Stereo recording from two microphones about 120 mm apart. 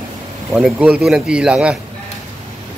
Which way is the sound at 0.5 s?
10° right (ahead or behind).